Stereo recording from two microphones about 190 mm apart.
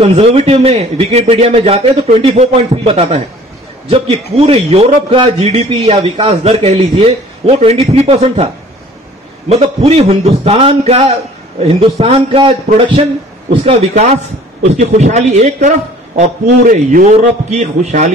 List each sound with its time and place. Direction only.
0.0 s a man's voice: 35° right (ahead or behind)
9.5 s a man's voice: 35° right (ahead or behind)